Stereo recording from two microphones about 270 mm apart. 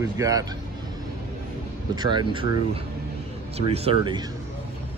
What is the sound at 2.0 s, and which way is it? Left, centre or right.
Speech, centre.